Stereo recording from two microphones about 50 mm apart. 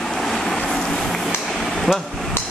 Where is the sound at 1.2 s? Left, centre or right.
Centre.